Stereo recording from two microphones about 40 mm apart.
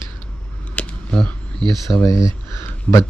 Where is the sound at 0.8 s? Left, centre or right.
Left.